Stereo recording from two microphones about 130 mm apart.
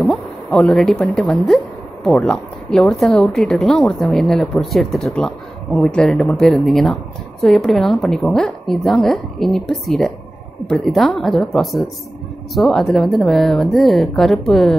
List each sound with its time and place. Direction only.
0.0 s a woman's voice: 5° left (ahead or behind)